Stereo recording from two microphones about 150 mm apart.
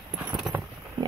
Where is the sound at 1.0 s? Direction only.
30° right (ahead or behind).